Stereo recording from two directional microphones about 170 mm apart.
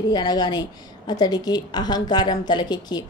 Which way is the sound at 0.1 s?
25° left (ahead or behind).